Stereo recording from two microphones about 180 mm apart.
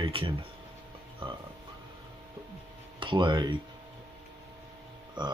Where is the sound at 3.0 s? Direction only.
25° right (ahead or behind).